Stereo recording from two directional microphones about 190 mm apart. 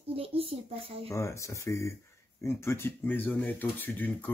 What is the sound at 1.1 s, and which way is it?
Speech, 15° left (ahead or behind).